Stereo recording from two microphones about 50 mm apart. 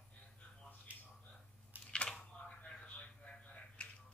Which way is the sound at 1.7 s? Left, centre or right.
Right.